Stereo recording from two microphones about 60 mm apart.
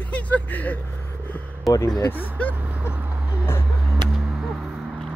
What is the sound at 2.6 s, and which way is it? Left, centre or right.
Vehicle, right.